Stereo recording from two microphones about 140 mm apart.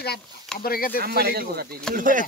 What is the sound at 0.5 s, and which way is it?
Speech, 90° left.